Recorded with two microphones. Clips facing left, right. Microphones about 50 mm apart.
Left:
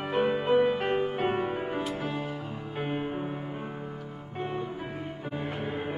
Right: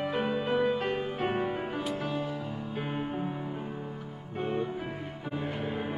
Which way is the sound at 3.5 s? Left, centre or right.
Left.